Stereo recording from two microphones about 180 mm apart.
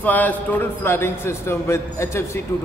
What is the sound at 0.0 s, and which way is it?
A man's voice, 10° left (ahead or behind).